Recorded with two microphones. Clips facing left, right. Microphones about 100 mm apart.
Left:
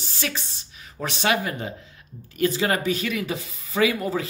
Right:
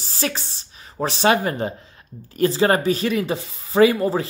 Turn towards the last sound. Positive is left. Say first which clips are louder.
# right 7 dB
turn(degrees=-35)  # may be behind; listen again after turning